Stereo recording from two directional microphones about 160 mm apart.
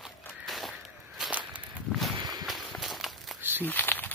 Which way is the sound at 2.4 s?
Centre (ahead or behind).